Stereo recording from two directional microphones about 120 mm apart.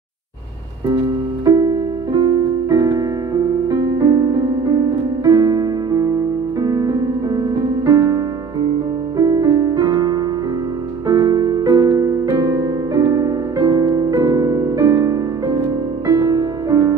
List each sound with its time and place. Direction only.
1.4 s music: 30° right (ahead or behind)
9.2 s music: 30° right (ahead or behind)